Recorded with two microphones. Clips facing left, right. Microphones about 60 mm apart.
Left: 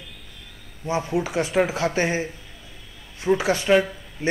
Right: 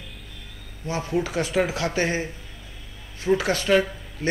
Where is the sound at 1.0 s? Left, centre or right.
Centre.